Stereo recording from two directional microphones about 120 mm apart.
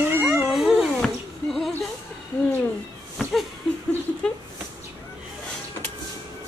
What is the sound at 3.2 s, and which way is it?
Laughter, centre (ahead or behind).